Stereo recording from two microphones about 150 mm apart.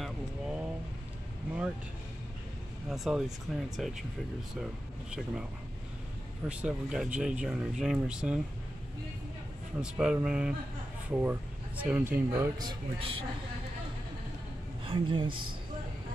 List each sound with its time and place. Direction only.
0.0 s a sound: 5° right (ahead or behind)
2.9 s speech: 5° right (ahead or behind)
5.1 s speech: 5° right (ahead or behind)
9.8 s speech: 5° right (ahead or behind); by 13.2 s 35° right (ahead or behind)
14.9 s speech: 35° right (ahead or behind)